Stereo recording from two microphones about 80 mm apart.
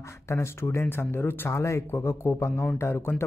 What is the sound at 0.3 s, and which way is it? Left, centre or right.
Speech, left.